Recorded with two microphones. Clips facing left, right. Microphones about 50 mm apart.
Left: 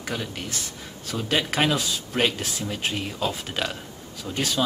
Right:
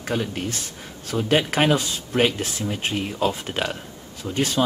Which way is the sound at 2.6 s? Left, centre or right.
Centre.